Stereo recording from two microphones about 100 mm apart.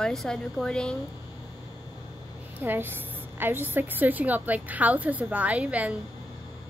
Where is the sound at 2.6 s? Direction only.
20° right (ahead or behind).